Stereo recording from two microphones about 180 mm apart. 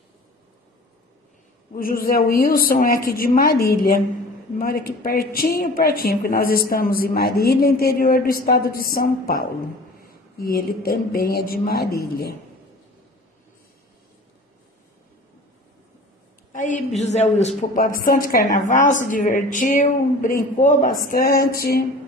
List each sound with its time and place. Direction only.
1.7 s a woman's voice: 50° left (ahead or behind)
16.5 s a sound: 45° left (ahead or behind)
17.0 s a man's voice: 40° left (ahead or behind)
17.7 s a woman's voice: 50° left (ahead or behind)